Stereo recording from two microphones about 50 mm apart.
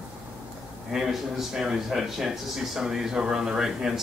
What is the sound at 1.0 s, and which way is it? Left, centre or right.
A man's voice, centre.